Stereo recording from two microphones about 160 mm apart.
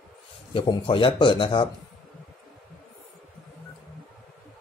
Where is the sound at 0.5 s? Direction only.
35° left (ahead or behind).